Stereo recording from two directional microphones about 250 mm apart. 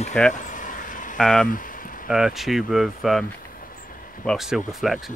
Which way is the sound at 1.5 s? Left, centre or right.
Left.